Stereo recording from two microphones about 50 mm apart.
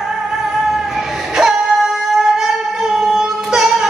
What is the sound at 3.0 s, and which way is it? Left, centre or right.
Child singing, centre.